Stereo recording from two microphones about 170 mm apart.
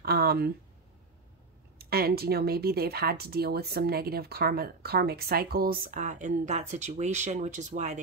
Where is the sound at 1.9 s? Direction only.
65° right (ahead or behind).